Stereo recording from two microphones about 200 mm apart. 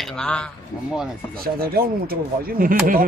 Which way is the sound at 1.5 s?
50° right (ahead or behind).